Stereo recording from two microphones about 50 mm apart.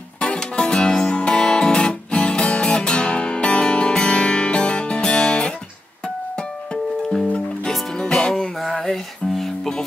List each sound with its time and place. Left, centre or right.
0.2 s music: centre